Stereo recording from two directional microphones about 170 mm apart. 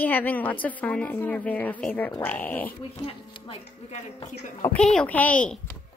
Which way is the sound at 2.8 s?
35° left (ahead or behind).